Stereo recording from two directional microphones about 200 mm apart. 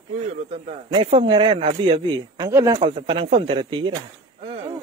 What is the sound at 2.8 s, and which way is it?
Speech, 30° right (ahead or behind).